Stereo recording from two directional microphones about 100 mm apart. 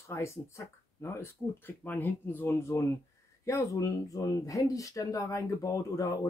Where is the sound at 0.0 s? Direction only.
25° left (ahead or behind).